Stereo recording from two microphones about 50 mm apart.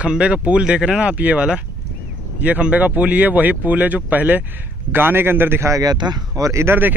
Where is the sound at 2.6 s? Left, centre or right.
Right.